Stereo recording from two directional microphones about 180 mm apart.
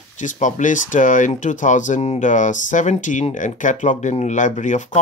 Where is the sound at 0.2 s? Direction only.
45° left (ahead or behind).